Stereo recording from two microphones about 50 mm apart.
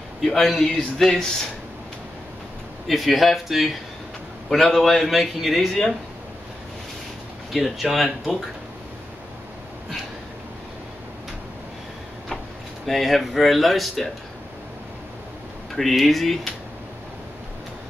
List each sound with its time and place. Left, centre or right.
0.2 s a man's voice: centre
2.9 s a man's voice: centre
7.5 s a man's voice: centre
12.8 s a man's voice: centre
15.7 s a man's voice: centre